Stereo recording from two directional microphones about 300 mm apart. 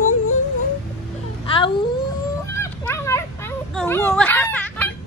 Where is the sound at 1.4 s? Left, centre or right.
Centre.